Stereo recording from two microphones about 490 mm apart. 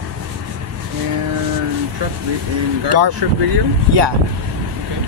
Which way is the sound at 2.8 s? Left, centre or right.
Right.